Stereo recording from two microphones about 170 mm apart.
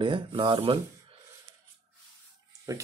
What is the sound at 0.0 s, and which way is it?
Speech, 30° right (ahead or behind).